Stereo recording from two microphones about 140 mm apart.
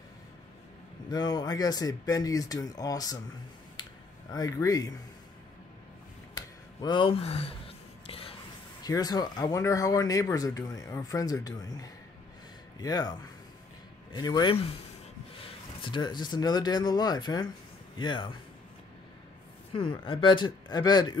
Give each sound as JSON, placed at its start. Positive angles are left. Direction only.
{"t": 1.1, "sound": "speech", "side_deg": 30}
{"t": 3.8, "sound": "a sound", "side_deg": 35}
{"t": 4.3, "sound": "speech", "side_deg": 25}
{"t": 6.3, "sound": "a sound", "side_deg": 30}
{"t": 8.8, "sound": "speech", "side_deg": 25}
{"t": 14.1, "sound": "speech", "side_deg": 30}
{"t": 15.8, "sound": "speech", "side_deg": 35}
{"t": 19.7, "sound": "speech", "side_deg": 40}